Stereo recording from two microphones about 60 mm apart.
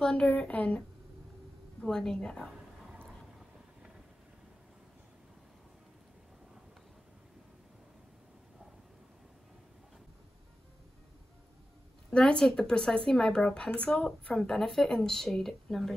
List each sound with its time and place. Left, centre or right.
0.0 s a woman's voice: centre
1.8 s speech: centre
12.1 s speech: centre